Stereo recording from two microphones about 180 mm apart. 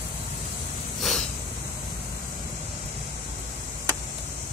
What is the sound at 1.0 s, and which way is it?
Snort, centre (ahead or behind).